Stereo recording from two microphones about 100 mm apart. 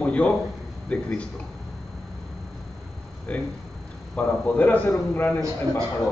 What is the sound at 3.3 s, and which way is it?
A man's voice, 10° left (ahead or behind).